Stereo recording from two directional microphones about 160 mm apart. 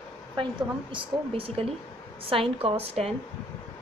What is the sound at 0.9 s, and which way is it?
A woman's voice, 35° right (ahead or behind).